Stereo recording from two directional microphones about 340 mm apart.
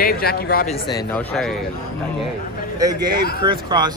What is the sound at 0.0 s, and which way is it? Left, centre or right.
Speech, left.